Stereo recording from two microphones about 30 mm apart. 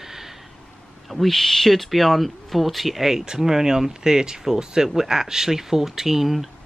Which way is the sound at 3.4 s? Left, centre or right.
Centre.